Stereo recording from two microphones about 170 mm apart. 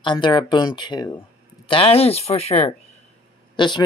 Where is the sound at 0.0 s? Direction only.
25° left (ahead or behind).